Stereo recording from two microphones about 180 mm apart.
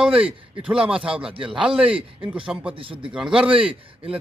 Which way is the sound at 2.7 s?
30° right (ahead or behind).